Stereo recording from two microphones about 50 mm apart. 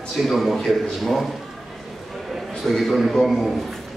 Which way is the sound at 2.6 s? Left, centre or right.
Centre.